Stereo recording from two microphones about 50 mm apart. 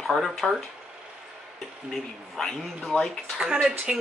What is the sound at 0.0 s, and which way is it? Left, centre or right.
Speech, centre.